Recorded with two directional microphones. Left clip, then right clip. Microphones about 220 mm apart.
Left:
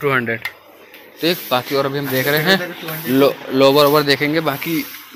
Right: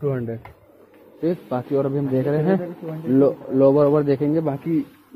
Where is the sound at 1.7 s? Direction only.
Centre (ahead or behind).